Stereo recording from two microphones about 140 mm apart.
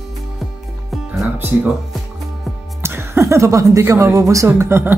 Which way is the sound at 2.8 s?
15° right (ahead or behind).